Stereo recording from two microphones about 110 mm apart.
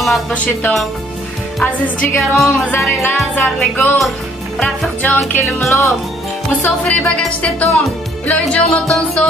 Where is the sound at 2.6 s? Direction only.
20° left (ahead or behind).